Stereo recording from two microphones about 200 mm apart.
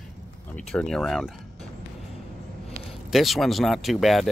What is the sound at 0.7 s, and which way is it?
Speech, 5° left (ahead or behind).